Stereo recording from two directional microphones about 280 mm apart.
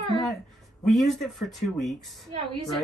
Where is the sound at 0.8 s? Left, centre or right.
Centre.